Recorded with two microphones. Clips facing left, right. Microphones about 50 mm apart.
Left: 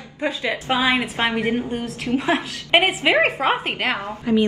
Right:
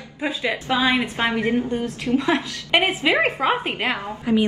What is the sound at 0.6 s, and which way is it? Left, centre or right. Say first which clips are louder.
A woman's voice: left 1 dB; left.